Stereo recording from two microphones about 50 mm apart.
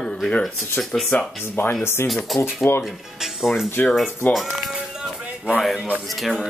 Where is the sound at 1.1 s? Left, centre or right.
Left.